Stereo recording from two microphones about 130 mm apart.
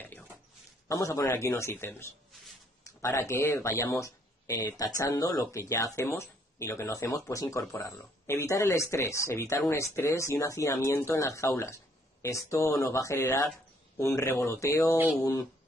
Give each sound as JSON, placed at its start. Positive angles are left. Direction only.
{"t": 0.8, "sound": "speech", "side_deg": 25}